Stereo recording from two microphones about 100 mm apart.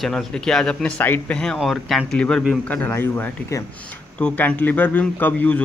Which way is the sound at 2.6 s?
15° left (ahead or behind).